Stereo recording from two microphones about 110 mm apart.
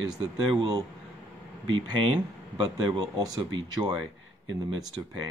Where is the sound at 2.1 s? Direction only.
45° right (ahead or behind).